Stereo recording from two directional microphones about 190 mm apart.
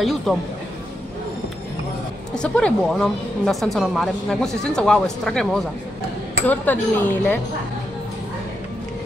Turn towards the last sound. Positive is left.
turn(degrees=10)  # may be behind; listen again after turning